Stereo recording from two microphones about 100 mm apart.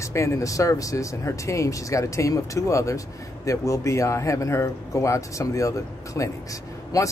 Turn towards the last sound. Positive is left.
turn(degrees=40)  # may be behind; listen again after turning